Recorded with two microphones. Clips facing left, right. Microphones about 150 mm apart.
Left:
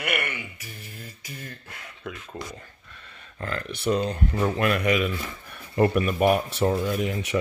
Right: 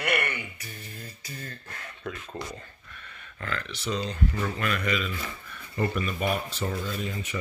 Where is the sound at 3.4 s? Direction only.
45° left (ahead or behind).